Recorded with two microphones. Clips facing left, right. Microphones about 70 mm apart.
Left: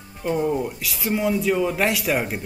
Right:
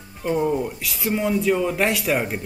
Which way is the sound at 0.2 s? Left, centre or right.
Centre.